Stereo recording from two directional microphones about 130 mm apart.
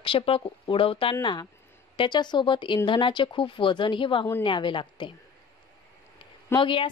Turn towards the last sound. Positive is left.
turn(degrees=40)  # may be behind; listen again after turning